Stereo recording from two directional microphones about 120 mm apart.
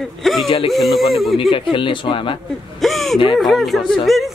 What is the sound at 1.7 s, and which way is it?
Speech, 45° left (ahead or behind).